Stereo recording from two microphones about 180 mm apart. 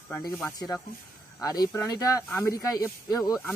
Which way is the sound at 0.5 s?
20° left (ahead or behind).